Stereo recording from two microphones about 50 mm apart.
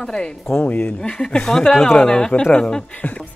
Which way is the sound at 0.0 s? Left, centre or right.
Centre.